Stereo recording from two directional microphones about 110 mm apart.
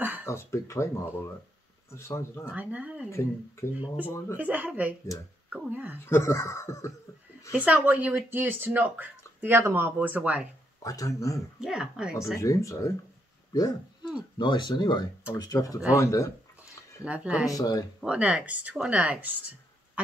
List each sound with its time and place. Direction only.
0.0 s a sound: 15° right (ahead or behind)
0.3 s speech: 25° left (ahead or behind)
2.5 s speech: 15° right (ahead or behind)
6.0 s speech: 25° left (ahead or behind)
7.5 s speech: 15° right (ahead or behind)
10.8 s speech: 30° left (ahead or behind)
11.6 s speech: 5° right (ahead or behind)
12.4 s speech: 30° left (ahead or behind)
14.1 s speech: 45° left (ahead or behind); by 16.3 s 30° left (ahead or behind)
17.0 s speech: 10° right (ahead or behind)
17.5 s speech: 35° left (ahead or behind)
18.0 s speech: 10° right (ahead or behind)